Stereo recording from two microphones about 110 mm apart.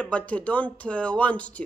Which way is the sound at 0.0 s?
10° left (ahead or behind).